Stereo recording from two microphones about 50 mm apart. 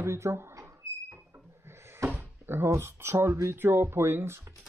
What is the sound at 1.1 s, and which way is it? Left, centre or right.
Cupboard open or close, right.